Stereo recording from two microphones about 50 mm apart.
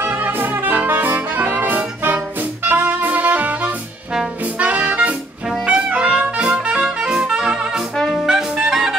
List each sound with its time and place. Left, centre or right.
0.0 s music: right; by 8.9 s centre